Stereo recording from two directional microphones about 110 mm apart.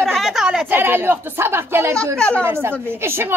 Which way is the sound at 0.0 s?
Centre (ahead or behind).